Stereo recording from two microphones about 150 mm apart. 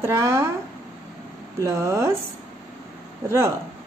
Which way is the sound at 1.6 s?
20° right (ahead or behind).